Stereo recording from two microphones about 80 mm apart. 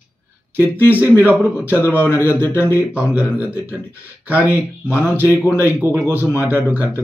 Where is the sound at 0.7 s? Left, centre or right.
Left.